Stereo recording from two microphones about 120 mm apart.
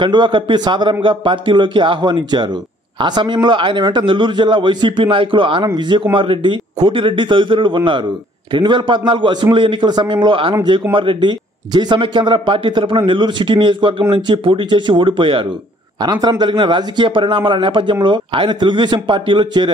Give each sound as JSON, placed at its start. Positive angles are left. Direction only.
{"t": 0.0, "sound": "a man's voice", "side_deg": -40}
{"t": 16.0, "sound": "a man's voice", "side_deg": -35}